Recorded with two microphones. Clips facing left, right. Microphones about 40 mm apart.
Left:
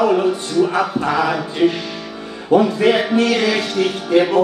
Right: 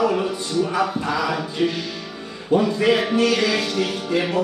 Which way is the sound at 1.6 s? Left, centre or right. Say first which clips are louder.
Left 6 dB; centre.